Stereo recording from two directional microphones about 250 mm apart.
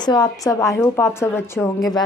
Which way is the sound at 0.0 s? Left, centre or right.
Centre.